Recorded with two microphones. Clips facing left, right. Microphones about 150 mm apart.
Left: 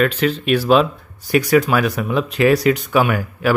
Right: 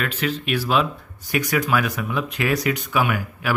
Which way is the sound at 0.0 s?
35° left (ahead or behind).